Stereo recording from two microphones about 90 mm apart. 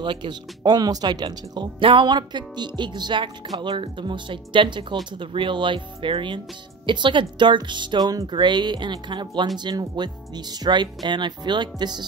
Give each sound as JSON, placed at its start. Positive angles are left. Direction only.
{"t": 0.0, "sound": "speech", "side_deg": -60}
{"t": 8.4, "sound": "speech", "side_deg": -60}